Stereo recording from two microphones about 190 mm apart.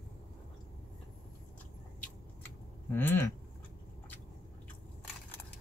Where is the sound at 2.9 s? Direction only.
10° left (ahead or behind).